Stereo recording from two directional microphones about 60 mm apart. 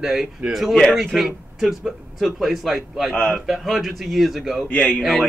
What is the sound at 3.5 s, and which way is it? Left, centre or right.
A man's voice, centre.